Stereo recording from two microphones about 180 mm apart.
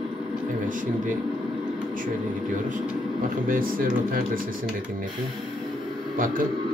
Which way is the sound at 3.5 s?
50° right (ahead or behind).